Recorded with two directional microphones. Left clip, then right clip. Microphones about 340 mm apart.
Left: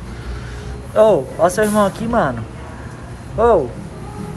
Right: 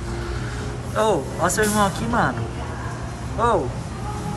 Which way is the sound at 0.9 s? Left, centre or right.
Centre.